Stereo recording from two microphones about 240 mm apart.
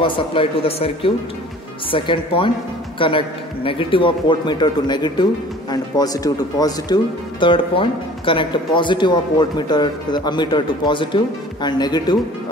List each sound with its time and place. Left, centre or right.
0.0 s a man's voice: left